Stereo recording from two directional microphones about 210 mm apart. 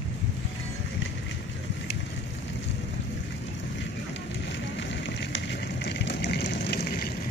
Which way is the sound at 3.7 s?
60° left (ahead or behind).